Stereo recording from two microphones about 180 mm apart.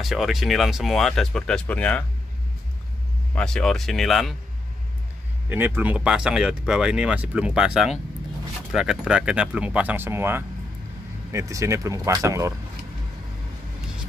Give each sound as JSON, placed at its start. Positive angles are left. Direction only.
{"t": 0.0, "sound": "speech", "side_deg": 0}
{"t": 3.3, "sound": "speech", "side_deg": 5}
{"t": 5.5, "sound": "speech", "side_deg": -10}